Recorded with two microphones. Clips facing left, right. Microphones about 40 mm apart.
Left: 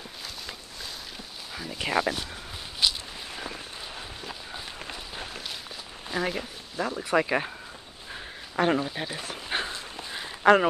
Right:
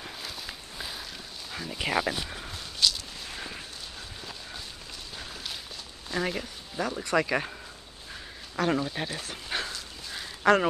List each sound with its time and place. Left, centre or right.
1.5 s speech: centre
2.8 s a sound: centre
3.3 s a sound: centre
4.2 s run: centre
5.1 s walk: left
6.1 s speech: centre
8.6 s speech: left
8.9 s speech: centre
9.5 s walk: left